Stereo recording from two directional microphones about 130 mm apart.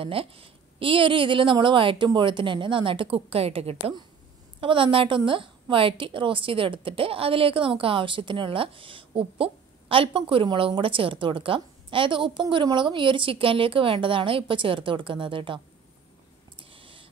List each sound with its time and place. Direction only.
0.0 s a woman's voice: 45° right (ahead or behind)
16.5 s owl: 45° right (ahead or behind)